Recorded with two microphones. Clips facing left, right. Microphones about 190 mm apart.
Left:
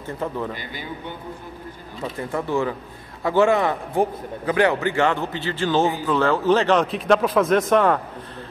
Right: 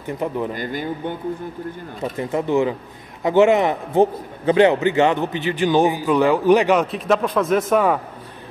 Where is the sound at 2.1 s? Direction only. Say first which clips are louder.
Right 4 dB; 20° right (ahead or behind).